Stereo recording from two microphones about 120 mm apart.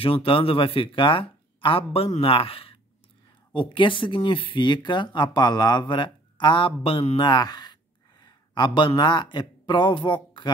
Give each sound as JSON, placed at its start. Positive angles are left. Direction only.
{"t": 0.0, "sound": "speech", "side_deg": 50}